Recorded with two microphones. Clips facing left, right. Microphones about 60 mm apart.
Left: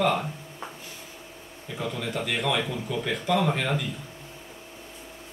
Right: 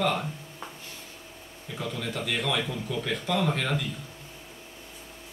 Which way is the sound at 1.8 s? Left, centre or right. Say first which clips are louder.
Left 2 dB; centre.